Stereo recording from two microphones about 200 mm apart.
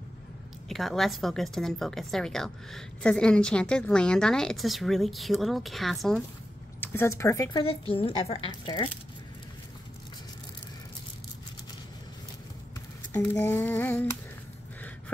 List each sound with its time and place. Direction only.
0.7 s a woman's voice: centre (ahead or behind)
6.8 s speech: 10° left (ahead or behind)
7.6 s speech: 30° left (ahead or behind)
13.1 s child singing: 10° left (ahead or behind)